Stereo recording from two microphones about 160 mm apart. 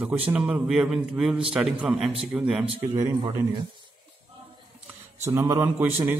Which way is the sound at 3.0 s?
25° right (ahead or behind).